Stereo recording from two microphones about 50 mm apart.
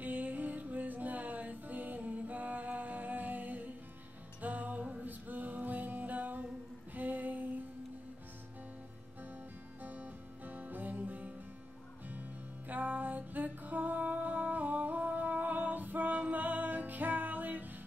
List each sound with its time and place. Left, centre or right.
0.0 s music: right
6.9 s a sound: right
9.8 s music: right